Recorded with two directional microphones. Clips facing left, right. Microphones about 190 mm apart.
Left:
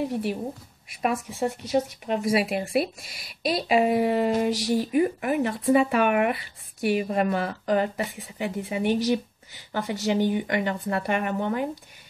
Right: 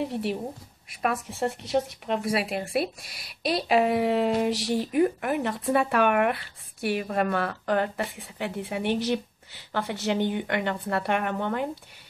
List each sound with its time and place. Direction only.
0.8 s speech: 5° left (ahead or behind)